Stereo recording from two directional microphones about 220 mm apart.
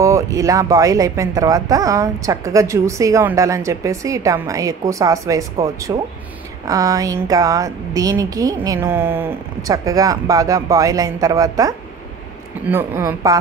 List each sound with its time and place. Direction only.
0.0 s speech: 15° right (ahead or behind)